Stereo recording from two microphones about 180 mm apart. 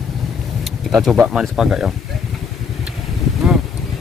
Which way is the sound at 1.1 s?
5° right (ahead or behind).